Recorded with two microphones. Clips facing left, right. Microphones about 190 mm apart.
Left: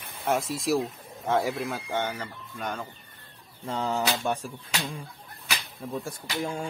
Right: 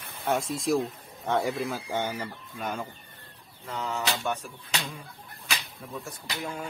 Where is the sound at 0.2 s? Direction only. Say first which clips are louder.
Left 1 dB; centre (ahead or behind).